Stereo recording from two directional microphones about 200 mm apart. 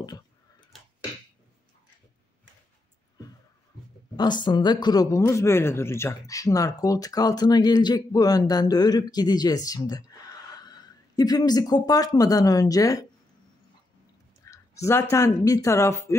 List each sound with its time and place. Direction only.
4.2 s speech: 20° left (ahead or behind)
14.4 s a woman's voice: 15° left (ahead or behind)